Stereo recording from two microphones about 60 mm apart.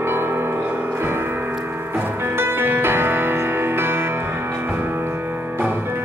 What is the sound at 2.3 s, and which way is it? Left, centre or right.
Music, right.